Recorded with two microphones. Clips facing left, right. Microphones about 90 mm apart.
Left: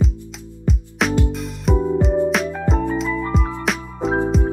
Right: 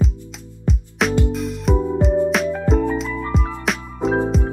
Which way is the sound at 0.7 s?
Centre (ahead or behind).